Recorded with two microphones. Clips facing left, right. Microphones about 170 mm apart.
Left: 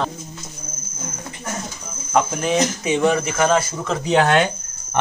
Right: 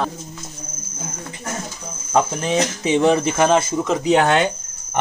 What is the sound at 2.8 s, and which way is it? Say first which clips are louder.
Speech: right 2 dB; 30° right (ahead or behind).